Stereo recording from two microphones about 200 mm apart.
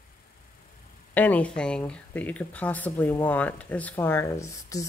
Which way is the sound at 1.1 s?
10° left (ahead or behind).